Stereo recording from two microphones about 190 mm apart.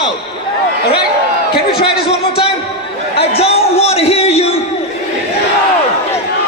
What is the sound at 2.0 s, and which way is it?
Music, 30° left (ahead or behind).